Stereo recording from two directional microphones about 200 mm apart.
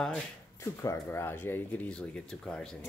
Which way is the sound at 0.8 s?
15° left (ahead or behind).